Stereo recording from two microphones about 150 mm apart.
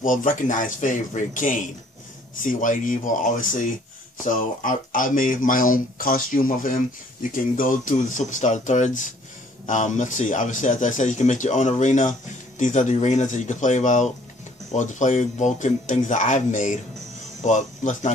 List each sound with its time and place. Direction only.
0.0 s speech: 60° left (ahead or behind)